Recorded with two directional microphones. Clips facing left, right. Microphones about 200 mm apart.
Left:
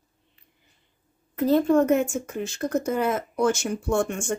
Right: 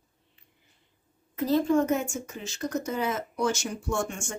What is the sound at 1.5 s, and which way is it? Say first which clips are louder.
Speech: left 4 dB; 60° left (ahead or behind).